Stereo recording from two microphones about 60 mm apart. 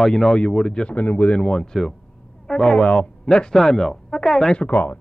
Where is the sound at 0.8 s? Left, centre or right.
Left.